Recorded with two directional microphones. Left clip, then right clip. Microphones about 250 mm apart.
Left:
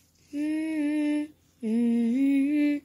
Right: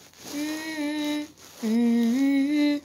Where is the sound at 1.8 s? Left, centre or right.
Right.